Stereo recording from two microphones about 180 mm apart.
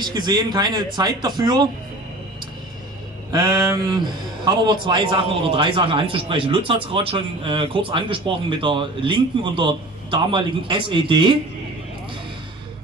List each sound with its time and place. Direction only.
0.0 s a man's voice: 25° right (ahead or behind)
3.3 s a man's voice: 20° right (ahead or behind)